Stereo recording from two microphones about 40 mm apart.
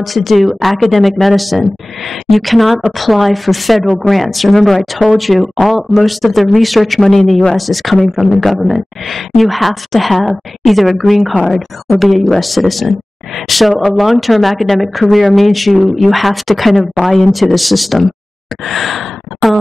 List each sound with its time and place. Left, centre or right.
0.0 s speech: centre
3.8 s speech: left
4.1 s speech: centre
12.4 s speech: centre